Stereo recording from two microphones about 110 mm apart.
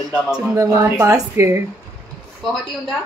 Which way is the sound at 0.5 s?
30° right (ahead or behind).